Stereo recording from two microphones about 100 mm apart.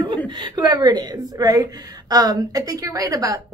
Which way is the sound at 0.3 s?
50° right (ahead or behind).